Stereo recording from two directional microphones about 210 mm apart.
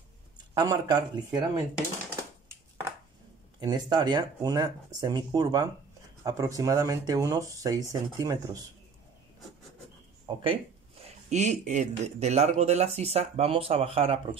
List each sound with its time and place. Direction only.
0.6 s speech: 20° right (ahead or behind)
3.5 s speech: 20° right (ahead or behind)
10.2 s speech: 25° right (ahead or behind)